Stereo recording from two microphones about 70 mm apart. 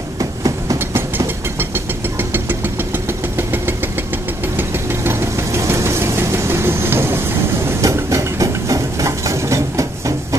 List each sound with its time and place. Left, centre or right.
0.2 s train: right
0.7 s train: right
2.1 s a sound: right
3.3 s engine: right
4.6 s engine knocking: right
7.8 s a sound: right